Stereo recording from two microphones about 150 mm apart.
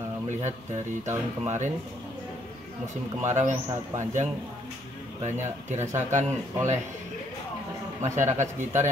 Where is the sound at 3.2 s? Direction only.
50° right (ahead or behind).